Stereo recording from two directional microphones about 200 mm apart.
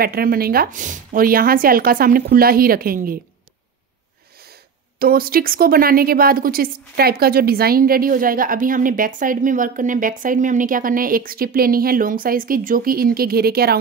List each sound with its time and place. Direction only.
0.0 s speech: 50° right (ahead or behind)
4.9 s speech: 45° right (ahead or behind)